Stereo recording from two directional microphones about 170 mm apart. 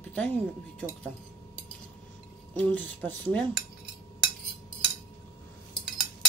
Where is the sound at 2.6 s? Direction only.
5° left (ahead or behind).